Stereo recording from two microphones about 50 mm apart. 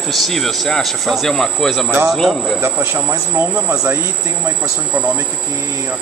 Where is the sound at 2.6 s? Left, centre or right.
Right.